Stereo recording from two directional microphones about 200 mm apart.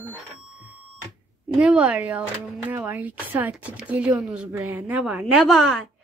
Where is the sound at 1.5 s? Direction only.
5° right (ahead or behind).